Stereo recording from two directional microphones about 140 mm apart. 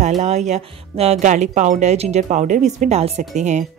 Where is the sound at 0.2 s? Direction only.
55° right (ahead or behind).